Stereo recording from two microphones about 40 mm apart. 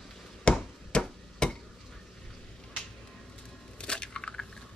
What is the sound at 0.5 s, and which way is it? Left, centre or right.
Hammer, left.